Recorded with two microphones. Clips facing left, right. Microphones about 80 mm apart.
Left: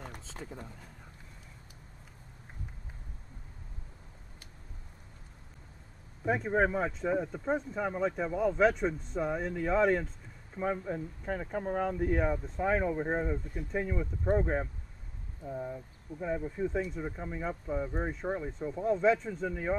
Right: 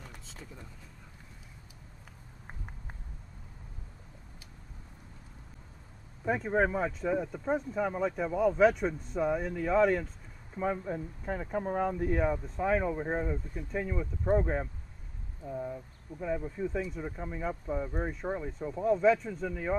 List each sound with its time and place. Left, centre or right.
0.0 s a sound: left
6.2 s speech: centre
19.4 s speech: centre